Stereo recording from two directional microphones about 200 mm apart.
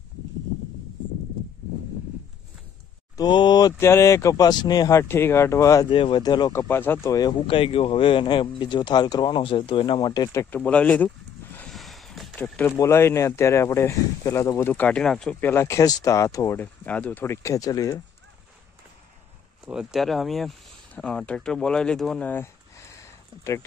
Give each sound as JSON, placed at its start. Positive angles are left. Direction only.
{"t": 3.2, "sound": "speech", "side_deg": 20}
{"t": 19.6, "sound": "speech", "side_deg": -5}